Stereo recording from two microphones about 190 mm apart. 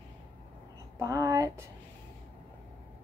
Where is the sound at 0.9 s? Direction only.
15° right (ahead or behind).